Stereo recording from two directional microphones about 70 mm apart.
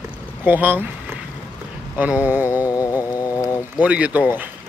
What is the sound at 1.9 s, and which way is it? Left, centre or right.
Speech, right.